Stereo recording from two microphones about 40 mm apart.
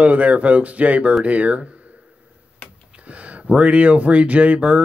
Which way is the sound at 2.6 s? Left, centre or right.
Left.